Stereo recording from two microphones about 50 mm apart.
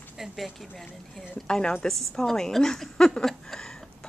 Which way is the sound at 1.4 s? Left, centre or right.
Centre.